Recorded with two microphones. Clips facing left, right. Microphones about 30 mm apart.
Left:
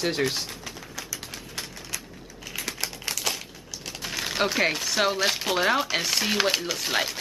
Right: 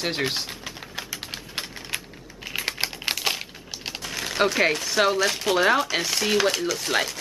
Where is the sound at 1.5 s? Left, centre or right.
Right.